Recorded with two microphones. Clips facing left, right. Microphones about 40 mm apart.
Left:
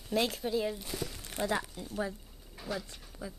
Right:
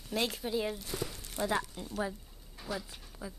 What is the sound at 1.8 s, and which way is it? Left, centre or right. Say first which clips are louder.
Speech: even; centre.